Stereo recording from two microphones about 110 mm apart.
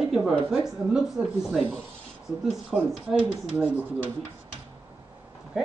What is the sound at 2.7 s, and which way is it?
Speech, 5° right (ahead or behind).